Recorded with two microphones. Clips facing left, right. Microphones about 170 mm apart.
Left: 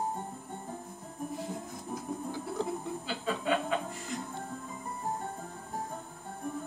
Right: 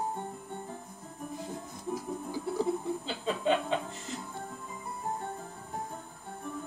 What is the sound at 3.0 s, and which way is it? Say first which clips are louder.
Chuckle: right 2 dB; 25° right (ahead or behind).